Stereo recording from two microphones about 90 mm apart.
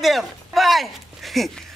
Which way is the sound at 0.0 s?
Centre (ahead or behind).